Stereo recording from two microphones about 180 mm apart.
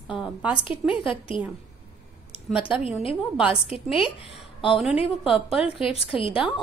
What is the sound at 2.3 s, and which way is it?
A woman's voice, 30° left (ahead or behind).